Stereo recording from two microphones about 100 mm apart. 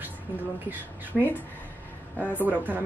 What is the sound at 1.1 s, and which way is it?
Speech, centre (ahead or behind).